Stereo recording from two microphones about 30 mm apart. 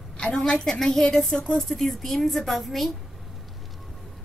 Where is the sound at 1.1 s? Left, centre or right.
Centre.